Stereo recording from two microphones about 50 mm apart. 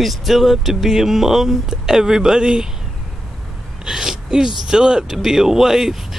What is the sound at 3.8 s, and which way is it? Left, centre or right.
Speech, centre.